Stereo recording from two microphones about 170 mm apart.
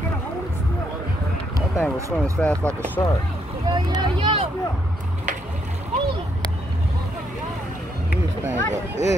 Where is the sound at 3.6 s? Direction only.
25° right (ahead or behind).